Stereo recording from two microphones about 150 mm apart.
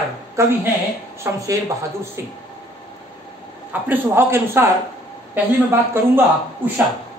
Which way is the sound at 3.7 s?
15° right (ahead or behind).